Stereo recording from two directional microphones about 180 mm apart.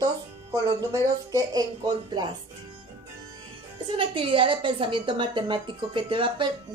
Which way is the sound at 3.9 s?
25° right (ahead or behind).